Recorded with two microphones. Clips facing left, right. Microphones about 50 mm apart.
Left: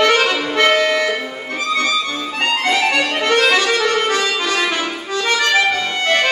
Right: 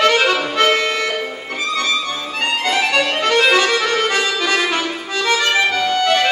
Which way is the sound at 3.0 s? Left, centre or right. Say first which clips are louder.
Even; left.